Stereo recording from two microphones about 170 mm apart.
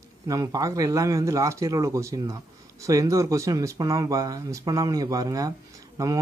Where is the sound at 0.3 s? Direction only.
20° right (ahead or behind).